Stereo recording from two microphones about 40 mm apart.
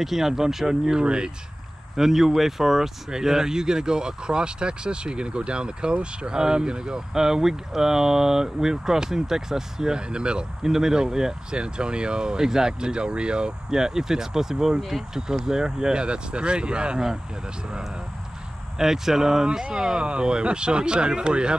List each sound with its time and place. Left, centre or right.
0.0 s speech: centre
2.0 s speech: centre
11.5 s speech: right
13.7 s speech: centre
18.8 s speech: centre